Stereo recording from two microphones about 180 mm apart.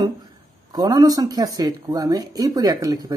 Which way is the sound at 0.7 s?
20° right (ahead or behind).